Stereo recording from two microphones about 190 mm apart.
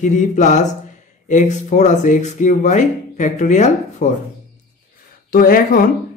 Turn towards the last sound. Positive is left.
turn(degrees=50)  # may be behind; listen again after turning